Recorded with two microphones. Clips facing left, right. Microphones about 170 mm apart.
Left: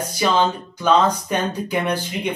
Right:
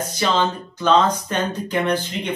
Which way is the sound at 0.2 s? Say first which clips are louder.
Left 2 dB; 10° left (ahead or behind).